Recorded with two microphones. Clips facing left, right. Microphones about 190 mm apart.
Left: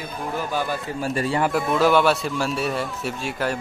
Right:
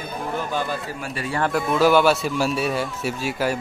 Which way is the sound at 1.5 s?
Centre (ahead or behind).